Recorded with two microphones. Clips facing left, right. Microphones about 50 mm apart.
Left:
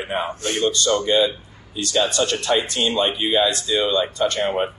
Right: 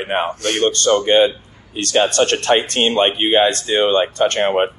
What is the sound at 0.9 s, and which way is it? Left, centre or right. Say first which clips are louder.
A man's voice: right 7 dB; right.